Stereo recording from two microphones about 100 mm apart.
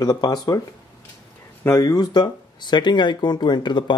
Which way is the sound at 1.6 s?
35° left (ahead or behind).